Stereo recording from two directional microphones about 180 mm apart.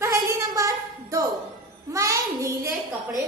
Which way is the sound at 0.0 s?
15° right (ahead or behind).